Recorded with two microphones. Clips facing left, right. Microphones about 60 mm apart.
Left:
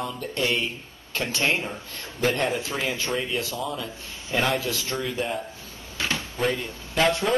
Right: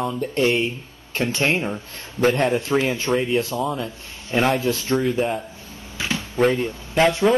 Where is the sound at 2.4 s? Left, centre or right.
Centre.